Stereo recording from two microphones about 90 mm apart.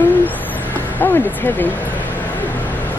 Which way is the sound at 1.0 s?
25° left (ahead or behind).